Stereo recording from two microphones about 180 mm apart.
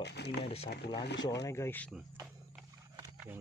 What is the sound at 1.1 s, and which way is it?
Speech, 20° left (ahead or behind).